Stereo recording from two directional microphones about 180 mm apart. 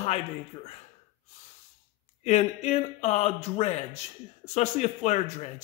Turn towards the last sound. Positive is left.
turn(degrees=40)  # may be behind; listen again after turning